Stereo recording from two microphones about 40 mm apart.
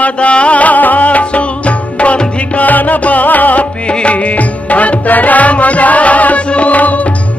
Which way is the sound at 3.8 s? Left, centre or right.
Left.